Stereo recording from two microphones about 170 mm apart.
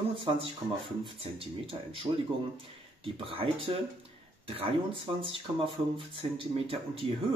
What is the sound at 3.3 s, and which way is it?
Speech, 30° right (ahead or behind).